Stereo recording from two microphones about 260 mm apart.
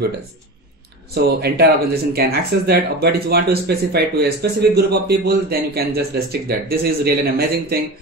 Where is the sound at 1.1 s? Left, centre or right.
Right.